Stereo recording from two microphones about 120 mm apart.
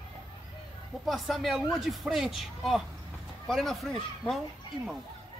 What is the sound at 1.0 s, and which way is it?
Speech, centre (ahead or behind).